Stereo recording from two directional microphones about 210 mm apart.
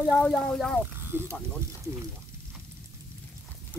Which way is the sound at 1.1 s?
10° right (ahead or behind).